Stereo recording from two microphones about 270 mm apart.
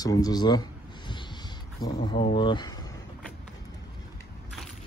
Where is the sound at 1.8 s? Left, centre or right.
Left.